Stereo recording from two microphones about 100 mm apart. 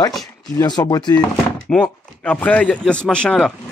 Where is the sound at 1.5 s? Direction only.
10° left (ahead or behind).